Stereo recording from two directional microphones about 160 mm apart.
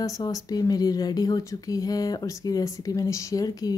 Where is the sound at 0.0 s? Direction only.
20° left (ahead or behind).